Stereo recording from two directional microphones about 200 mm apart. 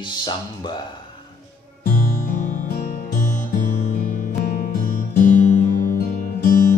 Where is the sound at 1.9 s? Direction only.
40° left (ahead or behind).